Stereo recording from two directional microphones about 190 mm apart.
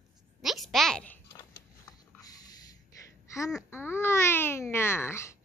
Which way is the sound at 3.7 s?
10° left (ahead or behind).